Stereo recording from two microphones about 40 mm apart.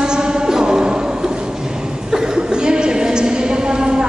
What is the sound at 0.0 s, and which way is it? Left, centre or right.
Music, centre.